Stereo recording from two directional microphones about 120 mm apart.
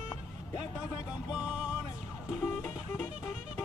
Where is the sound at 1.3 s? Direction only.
5° right (ahead or behind).